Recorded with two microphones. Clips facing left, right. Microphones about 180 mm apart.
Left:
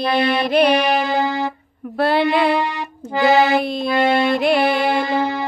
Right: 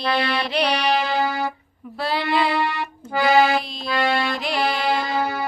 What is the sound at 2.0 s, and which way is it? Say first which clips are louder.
Speech: left 6 dB; 55° left (ahead or behind).